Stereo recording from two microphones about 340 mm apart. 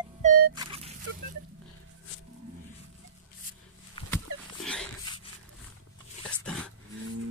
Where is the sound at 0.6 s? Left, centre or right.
Centre.